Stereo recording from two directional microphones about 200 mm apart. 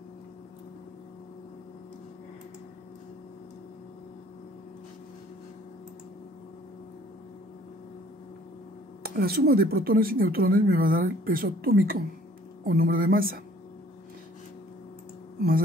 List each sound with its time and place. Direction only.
9.0 s speech: 50° right (ahead or behind)